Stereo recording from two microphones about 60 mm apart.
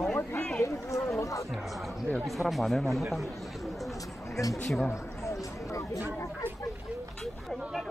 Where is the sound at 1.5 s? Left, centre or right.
Centre.